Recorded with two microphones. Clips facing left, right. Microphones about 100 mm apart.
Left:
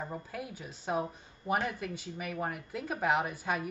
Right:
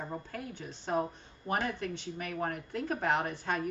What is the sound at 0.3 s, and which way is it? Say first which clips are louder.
Speech: even; 10° left (ahead or behind).